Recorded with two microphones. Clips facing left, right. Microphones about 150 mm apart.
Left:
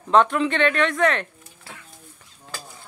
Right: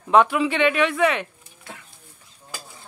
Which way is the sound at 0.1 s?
5° right (ahead or behind).